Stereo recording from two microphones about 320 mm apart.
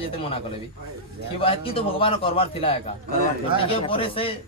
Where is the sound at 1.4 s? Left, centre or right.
Centre.